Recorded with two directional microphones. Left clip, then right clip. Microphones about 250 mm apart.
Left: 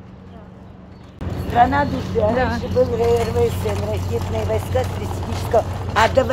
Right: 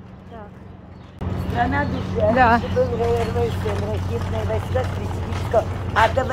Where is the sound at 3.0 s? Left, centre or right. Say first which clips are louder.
Left 4 dB; left.